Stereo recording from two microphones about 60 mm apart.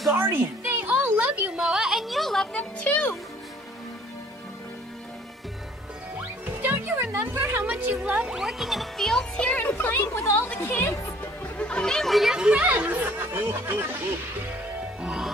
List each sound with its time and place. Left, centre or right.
0.2 s speech: right
0.7 s a sound: right; by 2.4 s centre
2.4 s music: centre
6.1 s music: centre
7.2 s a sound: centre
7.9 s music: centre
13.1 s speech: right